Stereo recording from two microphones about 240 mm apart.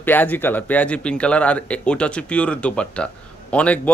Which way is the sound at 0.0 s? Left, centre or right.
Centre.